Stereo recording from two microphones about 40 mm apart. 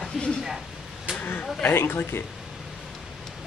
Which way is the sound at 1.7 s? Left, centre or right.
Left.